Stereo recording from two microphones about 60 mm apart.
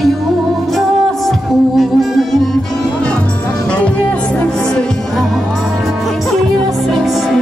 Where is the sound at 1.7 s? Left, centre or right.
Centre.